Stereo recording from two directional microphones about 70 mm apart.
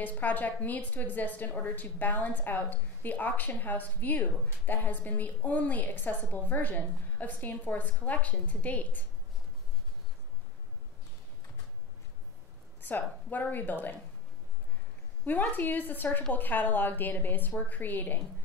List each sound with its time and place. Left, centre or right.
0.0 s a woman's voice: left
12.8 s a woman's voice: left
15.5 s a woman's voice: left